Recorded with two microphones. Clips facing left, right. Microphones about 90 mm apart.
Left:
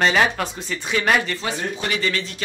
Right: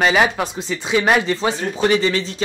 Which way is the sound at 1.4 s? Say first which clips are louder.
Right 6 dB; 30° right (ahead or behind).